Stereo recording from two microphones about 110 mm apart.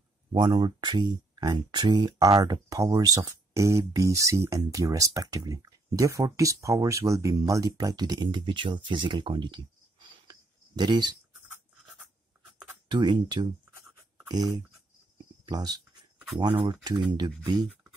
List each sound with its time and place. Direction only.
0.3 s speech: 45° right (ahead or behind)
10.8 s speech: 40° right (ahead or behind)
12.8 s speech: 45° right (ahead or behind)